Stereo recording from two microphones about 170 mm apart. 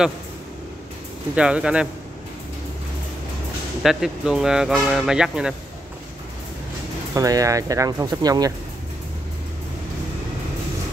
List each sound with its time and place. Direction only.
1.3 s speech: 5° right (ahead or behind)
3.8 s speech: centre (ahead or behind)
7.2 s speech: 20° right (ahead or behind)